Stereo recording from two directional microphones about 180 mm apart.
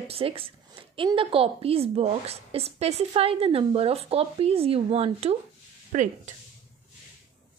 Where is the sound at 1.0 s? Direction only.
30° right (ahead or behind); by 6.1 s 45° right (ahead or behind).